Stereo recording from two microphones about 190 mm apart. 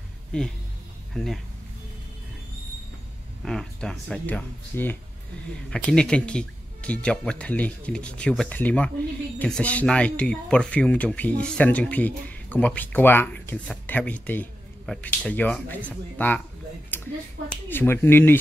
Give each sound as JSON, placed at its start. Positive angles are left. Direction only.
{"t": 0.3, "sound": "speech", "side_deg": 5}
{"t": 3.4, "sound": "speech", "side_deg": 0}
{"t": 16.9, "sound": "finger snapping", "side_deg": 10}
{"t": 17.6, "sound": "speech", "side_deg": 10}